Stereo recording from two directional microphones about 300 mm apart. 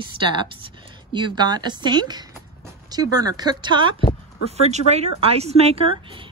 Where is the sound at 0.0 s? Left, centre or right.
Centre.